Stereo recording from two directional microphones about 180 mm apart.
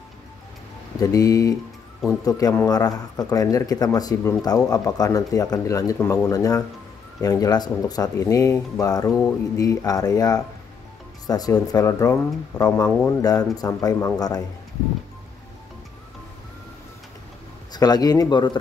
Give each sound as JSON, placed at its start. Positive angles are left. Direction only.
{"t": 1.0, "sound": "a man's voice", "side_deg": 20}
{"t": 17.7, "sound": "a man's voice", "side_deg": 20}